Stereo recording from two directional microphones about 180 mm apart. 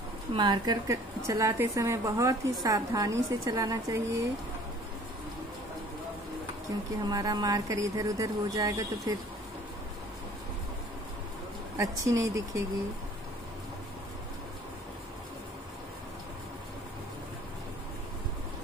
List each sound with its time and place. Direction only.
0.3 s a woman's voice: 25° right (ahead or behind)
7.1 s speech: 20° right (ahead or behind)
11.7 s speech: 20° right (ahead or behind)